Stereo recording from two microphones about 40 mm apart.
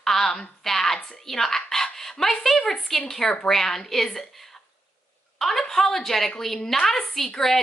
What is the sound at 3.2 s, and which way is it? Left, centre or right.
Speech, left.